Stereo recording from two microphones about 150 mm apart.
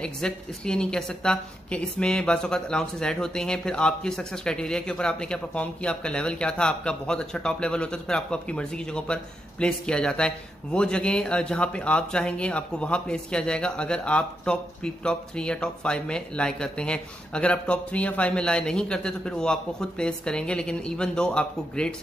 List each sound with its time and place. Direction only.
0.0 s a woman's voice: 5° left (ahead or behind)